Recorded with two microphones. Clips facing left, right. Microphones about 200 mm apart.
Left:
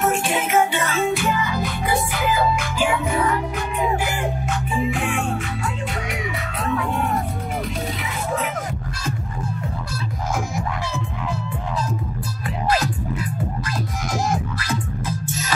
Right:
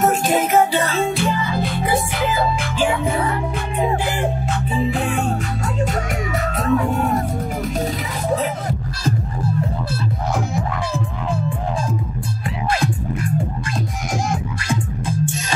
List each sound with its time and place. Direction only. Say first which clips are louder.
0.0 s music: right 4 dB; 40° right (ahead or behind)
4.7 s music: right 2 dB; 35° right (ahead or behind)
6.6 s music: right 4 dB; 45° right (ahead or behind)
8.4 s music: right 3 dB; 35° right (ahead or behind)